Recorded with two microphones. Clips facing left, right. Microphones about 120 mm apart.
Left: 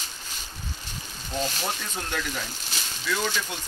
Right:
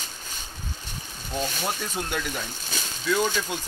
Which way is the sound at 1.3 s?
5° right (ahead or behind).